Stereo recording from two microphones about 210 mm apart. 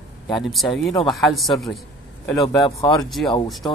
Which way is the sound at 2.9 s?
Centre (ahead or behind).